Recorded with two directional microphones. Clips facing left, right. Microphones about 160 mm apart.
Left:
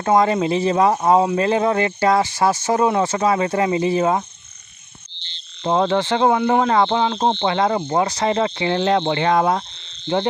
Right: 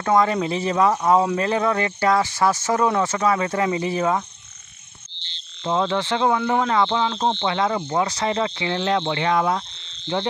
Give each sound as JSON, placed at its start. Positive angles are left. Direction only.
{"t": 0.0, "sound": "speech", "side_deg": 30}
{"t": 5.6, "sound": "speech", "side_deg": 40}
{"t": 7.2, "sound": "speech", "side_deg": 40}